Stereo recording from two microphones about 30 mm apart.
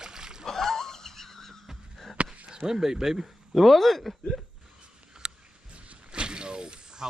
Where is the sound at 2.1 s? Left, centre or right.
Right.